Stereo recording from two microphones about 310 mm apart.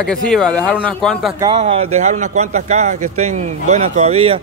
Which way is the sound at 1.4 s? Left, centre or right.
Centre.